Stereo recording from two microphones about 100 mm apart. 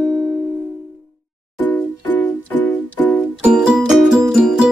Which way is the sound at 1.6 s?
15° left (ahead or behind).